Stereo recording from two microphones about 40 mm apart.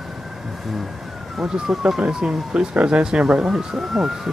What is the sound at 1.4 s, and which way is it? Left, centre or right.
Speech, centre.